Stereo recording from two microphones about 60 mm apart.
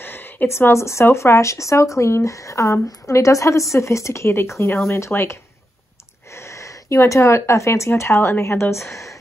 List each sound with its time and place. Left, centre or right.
0.0 s a sound: left
1.1 s speech: left
7.9 s speech: left